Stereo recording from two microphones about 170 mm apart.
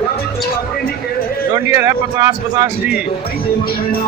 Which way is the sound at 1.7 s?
20° right (ahead or behind).